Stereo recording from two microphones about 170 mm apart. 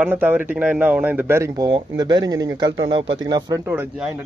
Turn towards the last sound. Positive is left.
turn(degrees=-25)  # may be behind; listen again after turning